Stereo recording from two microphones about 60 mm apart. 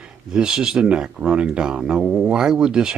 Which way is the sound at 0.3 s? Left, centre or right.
Centre.